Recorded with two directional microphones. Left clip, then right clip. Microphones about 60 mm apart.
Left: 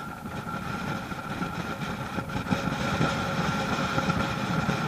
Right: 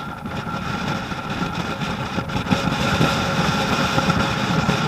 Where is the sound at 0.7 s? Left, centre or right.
Right.